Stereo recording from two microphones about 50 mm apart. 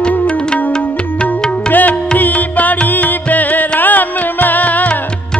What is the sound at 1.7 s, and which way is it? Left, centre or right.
Music, left.